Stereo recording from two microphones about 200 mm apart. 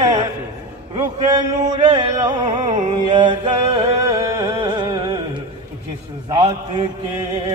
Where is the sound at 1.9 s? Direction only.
20° right (ahead or behind).